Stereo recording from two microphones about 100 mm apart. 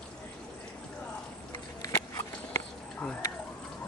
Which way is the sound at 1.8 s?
30° left (ahead or behind).